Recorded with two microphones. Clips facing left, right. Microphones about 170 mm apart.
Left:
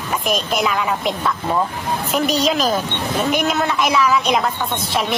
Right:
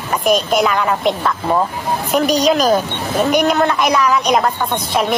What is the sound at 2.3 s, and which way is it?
Speech, 45° right (ahead or behind).